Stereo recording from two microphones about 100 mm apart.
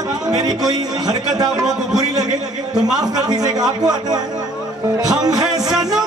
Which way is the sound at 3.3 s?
40° right (ahead or behind).